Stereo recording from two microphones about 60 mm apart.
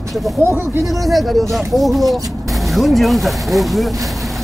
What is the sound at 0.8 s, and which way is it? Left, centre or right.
Speech, centre.